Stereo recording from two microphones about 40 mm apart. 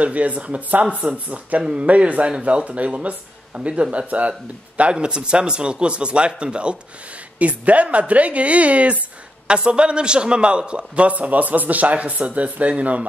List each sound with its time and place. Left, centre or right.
0.0 s a man's voice: right
4.9 s a man's voice: right